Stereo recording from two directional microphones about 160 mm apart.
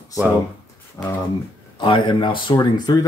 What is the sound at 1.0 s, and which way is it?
Speech, 20° left (ahead or behind).